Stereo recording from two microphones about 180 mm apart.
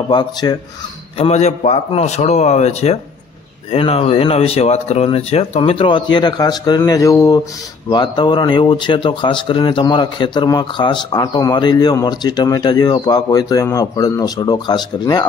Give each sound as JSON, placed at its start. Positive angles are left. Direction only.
{"t": 0.1, "sound": "speech", "side_deg": 25}
{"t": 1.1, "sound": "speech", "side_deg": 35}